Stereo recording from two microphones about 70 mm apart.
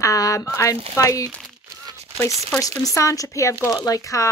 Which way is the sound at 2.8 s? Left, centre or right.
Left.